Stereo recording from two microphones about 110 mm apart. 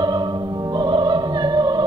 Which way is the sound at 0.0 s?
40° right (ahead or behind).